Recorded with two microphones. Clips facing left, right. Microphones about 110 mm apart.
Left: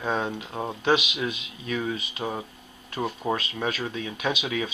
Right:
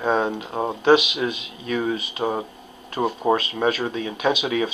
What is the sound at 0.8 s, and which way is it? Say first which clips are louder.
Speech: right 7 dB; 50° right (ahead or behind).